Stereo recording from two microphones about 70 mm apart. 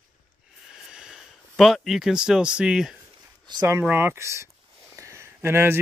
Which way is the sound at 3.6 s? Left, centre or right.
Right.